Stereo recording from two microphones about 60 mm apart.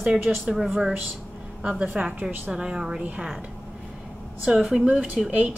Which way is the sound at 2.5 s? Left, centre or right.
Centre.